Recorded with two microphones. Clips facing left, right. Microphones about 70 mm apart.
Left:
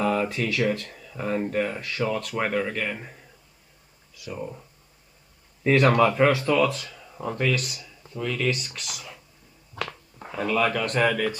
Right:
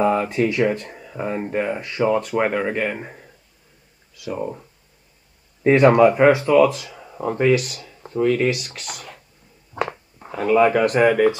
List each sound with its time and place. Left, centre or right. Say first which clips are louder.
0.0 s speech: right 6 dB; right
4.4 s speech: right 7 dB; right
7.8 s a sound: right 11 dB; right
9.8 s speech: right 8 dB; right